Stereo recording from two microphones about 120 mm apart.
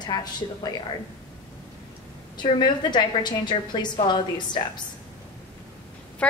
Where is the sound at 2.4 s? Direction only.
40° left (ahead or behind).